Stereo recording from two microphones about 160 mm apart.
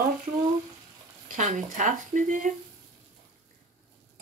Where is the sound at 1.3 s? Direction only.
50° right (ahead or behind).